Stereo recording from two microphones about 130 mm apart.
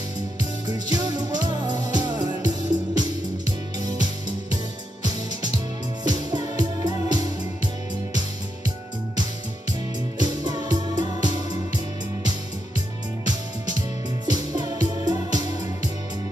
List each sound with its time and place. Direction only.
0.4 s music: 30° right (ahead or behind)
6.0 s music: 30° right (ahead or behind)
10.1 s music: 30° right (ahead or behind)
13.3 s music: 30° right (ahead or behind)